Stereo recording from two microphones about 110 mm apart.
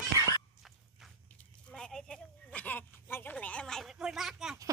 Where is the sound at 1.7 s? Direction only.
5° left (ahead or behind).